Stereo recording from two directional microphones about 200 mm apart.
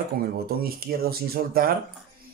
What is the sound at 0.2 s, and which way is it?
Speech, 50° right (ahead or behind).